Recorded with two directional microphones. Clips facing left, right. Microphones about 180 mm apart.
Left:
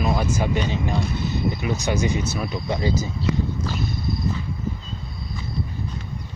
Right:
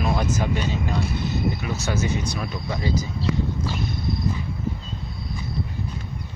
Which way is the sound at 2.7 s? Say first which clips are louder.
Left 2 dB; 25° left (ahead or behind).